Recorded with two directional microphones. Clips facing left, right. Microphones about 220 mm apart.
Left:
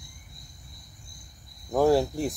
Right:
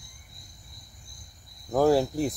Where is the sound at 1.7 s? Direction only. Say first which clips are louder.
Even; centre (ahead or behind).